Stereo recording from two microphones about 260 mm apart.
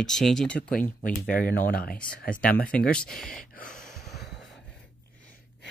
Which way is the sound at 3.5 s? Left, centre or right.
Left.